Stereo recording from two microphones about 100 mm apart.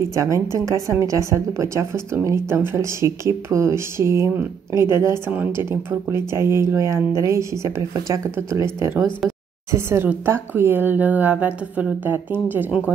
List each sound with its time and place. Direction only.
0.1 s a woman's voice: 30° right (ahead or behind)